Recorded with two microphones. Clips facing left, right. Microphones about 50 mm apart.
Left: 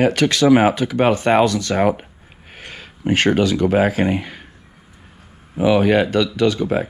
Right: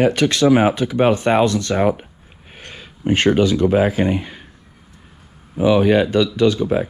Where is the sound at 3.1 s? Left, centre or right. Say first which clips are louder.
Right 1 dB; left.